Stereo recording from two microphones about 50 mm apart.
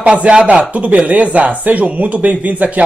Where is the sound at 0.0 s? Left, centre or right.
Right.